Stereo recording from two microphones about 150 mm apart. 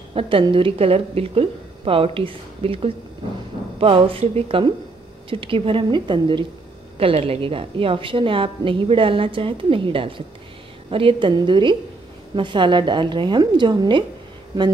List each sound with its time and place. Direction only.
0.1 s a woman's voice: 40° right (ahead or behind)